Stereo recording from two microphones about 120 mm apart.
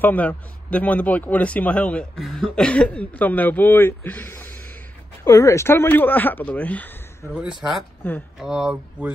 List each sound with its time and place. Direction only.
0.0 s speech: 15° left (ahead or behind)
5.2 s speech: 25° left (ahead or behind)
7.3 s speech: 5° right (ahead or behind)
8.0 s speech: 15° left (ahead or behind)
8.4 s speech: 5° right (ahead or behind)